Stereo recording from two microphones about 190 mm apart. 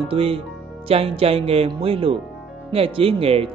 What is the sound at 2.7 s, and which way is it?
Music, 30° right (ahead or behind).